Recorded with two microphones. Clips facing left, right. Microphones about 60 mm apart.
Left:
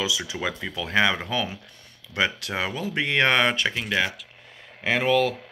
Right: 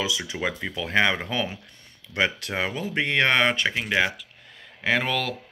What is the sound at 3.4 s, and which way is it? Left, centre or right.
Speech, centre.